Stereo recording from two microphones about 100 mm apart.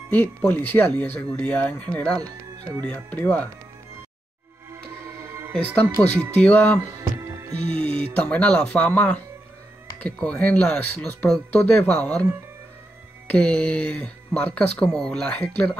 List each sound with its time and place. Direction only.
0.5 s speech: 15° left (ahead or behind)
2.2 s speech: 40° right (ahead or behind)
2.9 s speech: 15° left (ahead or behind)
5.6 s speech: 15° left (ahead or behind)
7.0 s music: 30° right (ahead or behind)
7.7 s music: 65° right (ahead or behind)
8.0 s speech: 15° left (ahead or behind)
13.3 s speech: 10° left (ahead or behind)